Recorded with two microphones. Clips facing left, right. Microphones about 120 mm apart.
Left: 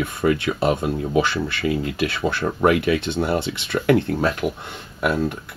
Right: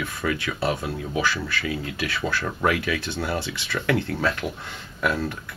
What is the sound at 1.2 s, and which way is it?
Speech, 25° left (ahead or behind).